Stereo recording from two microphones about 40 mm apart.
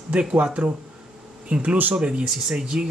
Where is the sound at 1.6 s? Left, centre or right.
Right.